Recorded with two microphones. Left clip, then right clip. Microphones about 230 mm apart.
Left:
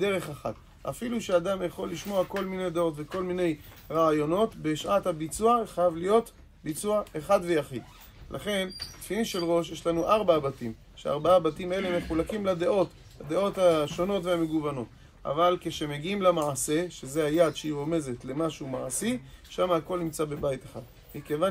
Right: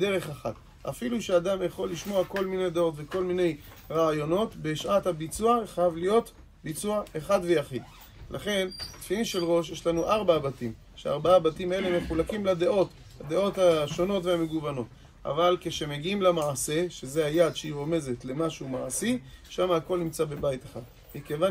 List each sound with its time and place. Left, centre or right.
0.0 s speech: centre